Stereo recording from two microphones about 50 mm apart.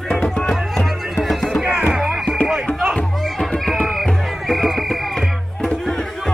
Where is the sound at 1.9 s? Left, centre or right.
Centre.